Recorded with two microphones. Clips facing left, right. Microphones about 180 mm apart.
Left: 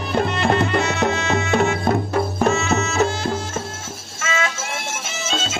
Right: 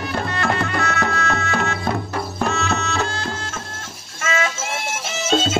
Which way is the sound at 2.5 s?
Centre (ahead or behind).